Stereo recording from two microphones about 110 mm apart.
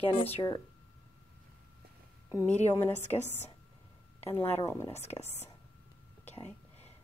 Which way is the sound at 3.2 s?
90° left.